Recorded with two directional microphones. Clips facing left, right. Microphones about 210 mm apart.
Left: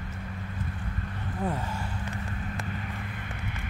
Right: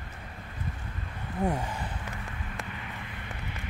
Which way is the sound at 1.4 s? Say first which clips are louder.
Right 2 dB; 15° right (ahead or behind).